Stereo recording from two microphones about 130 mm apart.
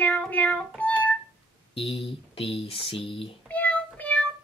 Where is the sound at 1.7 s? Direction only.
45° left (ahead or behind).